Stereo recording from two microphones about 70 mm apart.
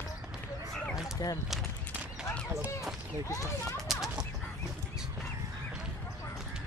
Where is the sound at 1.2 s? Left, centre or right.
Left.